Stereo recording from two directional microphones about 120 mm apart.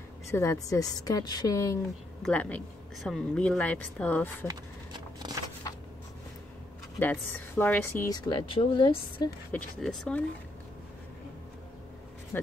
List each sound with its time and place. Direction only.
0.3 s a woman's voice: 25° left (ahead or behind)
2.3 s speech: 10° left (ahead or behind)
4.5 s a sound: 35° right (ahead or behind)
7.0 s speech: 15° left (ahead or behind)
8.1 s speech: 40° left (ahead or behind)
9.8 s speech: 5° left (ahead or behind)